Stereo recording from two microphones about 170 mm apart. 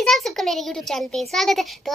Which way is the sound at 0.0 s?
Centre (ahead or behind).